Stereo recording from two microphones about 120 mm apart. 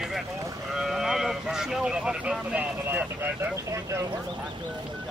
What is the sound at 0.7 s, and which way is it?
Speech, 5° right (ahead or behind).